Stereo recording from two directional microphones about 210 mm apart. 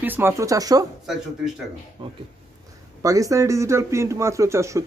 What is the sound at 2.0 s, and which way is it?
Speech, 25° right (ahead or behind).